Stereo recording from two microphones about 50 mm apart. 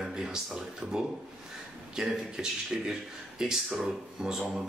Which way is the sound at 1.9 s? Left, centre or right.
Centre.